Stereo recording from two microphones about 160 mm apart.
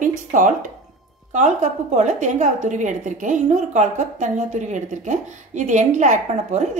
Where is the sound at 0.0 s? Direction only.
55° right (ahead or behind).